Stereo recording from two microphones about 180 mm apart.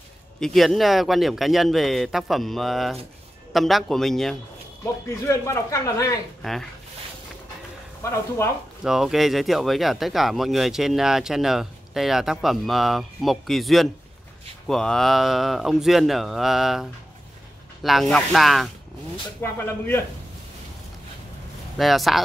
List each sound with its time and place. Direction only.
0.4 s speech: centre (ahead or behind)
5.2 s speech: 15° left (ahead or behind)
6.4 s speech: centre (ahead or behind)
8.8 s speech: centre (ahead or behind)
17.8 s speech: centre (ahead or behind)
19.4 s speech: 10° left (ahead or behind)
21.7 s speech: centre (ahead or behind)